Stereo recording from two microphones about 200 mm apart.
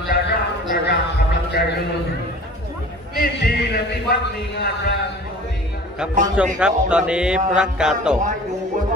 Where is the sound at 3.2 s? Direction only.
55° left (ahead or behind).